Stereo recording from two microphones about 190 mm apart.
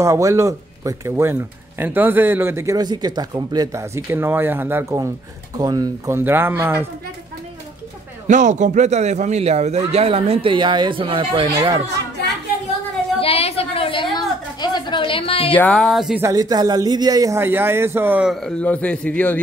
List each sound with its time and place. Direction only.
0.0 s speech: 15° right (ahead or behind)
8.3 s a man's voice: 40° right (ahead or behind); by 11.8 s 20° right (ahead or behind)
13.2 s a sound: 30° left (ahead or behind)
15.5 s speech: 5° left (ahead or behind)
16.2 s speech: 20° right (ahead or behind); by 19.4 s 10° left (ahead or behind)